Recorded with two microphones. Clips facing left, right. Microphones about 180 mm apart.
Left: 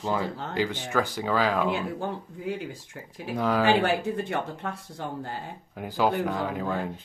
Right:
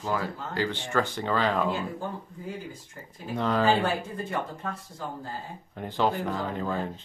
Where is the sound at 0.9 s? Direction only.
5° left (ahead or behind).